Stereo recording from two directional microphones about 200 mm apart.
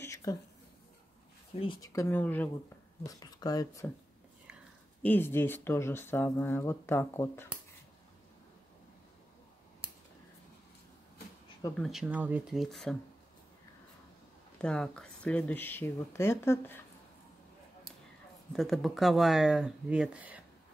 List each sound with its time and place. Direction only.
0.0 s a sound: 15° left (ahead or behind)
1.5 s speech: 25° left (ahead or behind)
5.0 s speech: 10° left (ahead or behind)
11.7 s speech: centre (ahead or behind)
14.6 s speech: 5° left (ahead or behind)
18.5 s speech: centre (ahead or behind)